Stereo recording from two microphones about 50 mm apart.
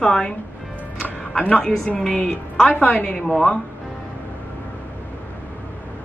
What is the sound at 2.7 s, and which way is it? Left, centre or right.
Speech, left.